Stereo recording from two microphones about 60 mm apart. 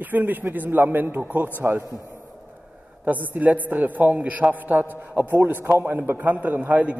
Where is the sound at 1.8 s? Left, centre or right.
Left.